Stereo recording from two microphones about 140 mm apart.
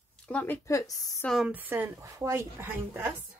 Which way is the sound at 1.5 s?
15° right (ahead or behind).